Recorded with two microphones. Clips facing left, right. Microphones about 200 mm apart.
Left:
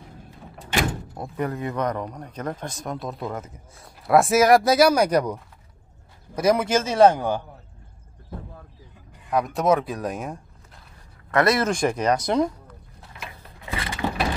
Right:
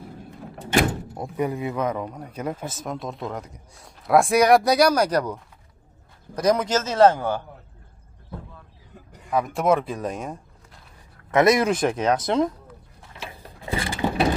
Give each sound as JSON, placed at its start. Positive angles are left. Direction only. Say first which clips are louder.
{"t": 1.1, "sound": "speech", "louder": "right 2 dB", "side_deg": -15}
{"t": 9.3, "sound": "speech", "louder": "even", "side_deg": 0}
{"t": 11.3, "sound": "speech", "louder": "right 3 dB", "side_deg": -15}
{"t": 11.7, "sound": "speech", "louder": "even", "side_deg": 0}
{"t": 13.2, "sound": "mechanisms", "louder": "right 4 dB", "side_deg": -30}